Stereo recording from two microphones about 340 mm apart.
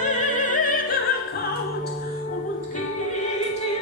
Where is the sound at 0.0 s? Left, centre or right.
Left.